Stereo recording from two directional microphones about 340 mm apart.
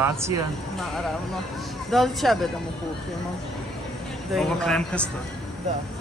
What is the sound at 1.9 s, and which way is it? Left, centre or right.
Speech, centre.